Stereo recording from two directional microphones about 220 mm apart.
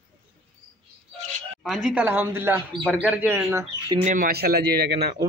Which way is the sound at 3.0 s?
10° right (ahead or behind).